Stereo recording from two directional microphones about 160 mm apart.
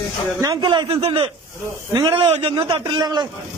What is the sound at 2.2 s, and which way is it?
A man's voice, 40° right (ahead or behind).